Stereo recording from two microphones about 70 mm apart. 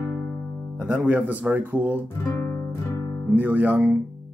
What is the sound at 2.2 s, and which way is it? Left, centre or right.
Guitar, left.